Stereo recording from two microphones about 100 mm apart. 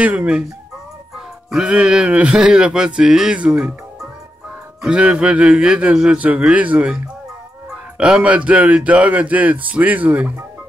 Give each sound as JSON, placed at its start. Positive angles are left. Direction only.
{"t": 0.0, "sound": "speech", "side_deg": -10}
{"t": 8.0, "sound": "speech", "side_deg": -10}